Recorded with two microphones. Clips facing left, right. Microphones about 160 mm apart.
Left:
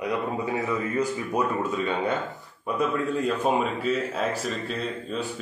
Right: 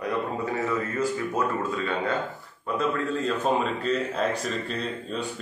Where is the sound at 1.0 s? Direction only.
20° left (ahead or behind); by 5.3 s centre (ahead or behind).